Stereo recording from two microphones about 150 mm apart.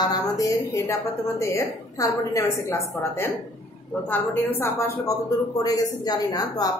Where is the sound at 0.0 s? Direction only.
25° left (ahead or behind).